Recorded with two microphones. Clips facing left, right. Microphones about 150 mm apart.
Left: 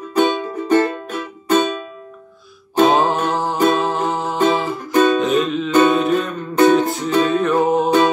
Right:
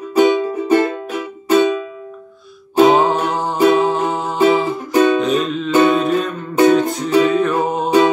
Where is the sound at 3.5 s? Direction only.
10° right (ahead or behind).